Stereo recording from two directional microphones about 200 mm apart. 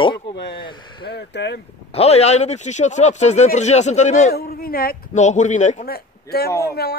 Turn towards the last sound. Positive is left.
turn(degrees=50)  # may be behind; listen again after turning